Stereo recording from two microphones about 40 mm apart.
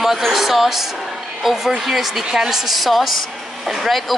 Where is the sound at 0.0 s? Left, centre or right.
Centre.